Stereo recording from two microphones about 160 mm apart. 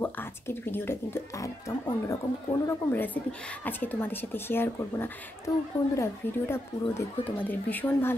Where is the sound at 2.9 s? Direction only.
10° left (ahead or behind).